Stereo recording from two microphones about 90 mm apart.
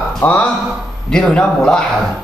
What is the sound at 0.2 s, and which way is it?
Speech, 20° left (ahead or behind).